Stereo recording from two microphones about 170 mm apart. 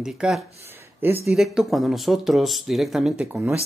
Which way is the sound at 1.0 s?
15° right (ahead or behind).